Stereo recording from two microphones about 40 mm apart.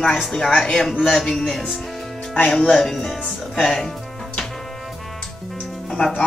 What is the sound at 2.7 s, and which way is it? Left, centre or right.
Speech, centre.